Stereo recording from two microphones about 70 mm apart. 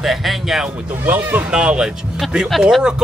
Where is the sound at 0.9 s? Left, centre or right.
Right.